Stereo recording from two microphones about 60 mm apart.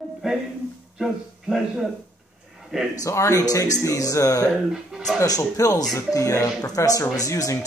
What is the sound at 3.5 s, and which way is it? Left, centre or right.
Speech, left.